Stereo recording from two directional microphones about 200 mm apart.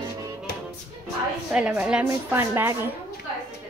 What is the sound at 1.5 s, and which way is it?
A woman's voice, 5° right (ahead or behind).